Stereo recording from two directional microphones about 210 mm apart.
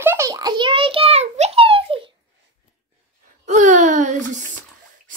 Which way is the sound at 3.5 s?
35° right (ahead or behind).